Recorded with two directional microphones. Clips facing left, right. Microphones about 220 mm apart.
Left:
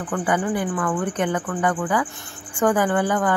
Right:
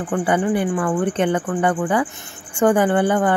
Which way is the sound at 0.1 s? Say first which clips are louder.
Right 4 dB; 25° right (ahead or behind).